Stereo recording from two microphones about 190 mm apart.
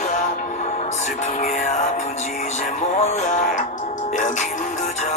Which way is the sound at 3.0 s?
40° left (ahead or behind).